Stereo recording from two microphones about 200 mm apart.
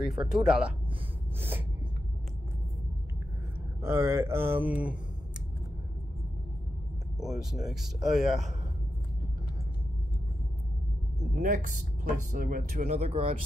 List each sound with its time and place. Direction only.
0.3 s speech: 5° right (ahead or behind)
3.8 s speech: 15° right (ahead or behind)
7.2 s speech: centre (ahead or behind)
11.3 s speech: 40° right (ahead or behind)